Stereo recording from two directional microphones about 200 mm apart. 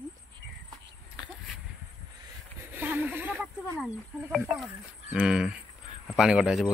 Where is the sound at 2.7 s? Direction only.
10° right (ahead or behind).